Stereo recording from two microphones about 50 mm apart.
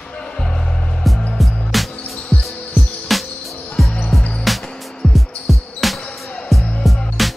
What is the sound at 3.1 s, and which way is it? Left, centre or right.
Music, centre.